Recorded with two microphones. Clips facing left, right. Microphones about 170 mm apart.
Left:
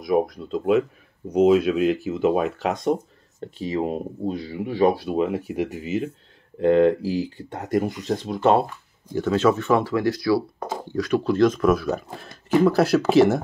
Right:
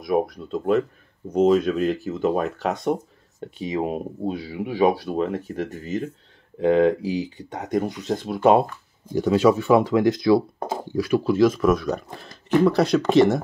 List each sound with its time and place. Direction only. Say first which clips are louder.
0.0 s speech: left 1 dB; centre (ahead or behind)
3.6 s speech: even; 15° right (ahead or behind)
4.9 s speech: left 2 dB; 10° left (ahead or behind); by 10.8 s 25° right (ahead or behind)
11.2 s speech: even; 5° right (ahead or behind)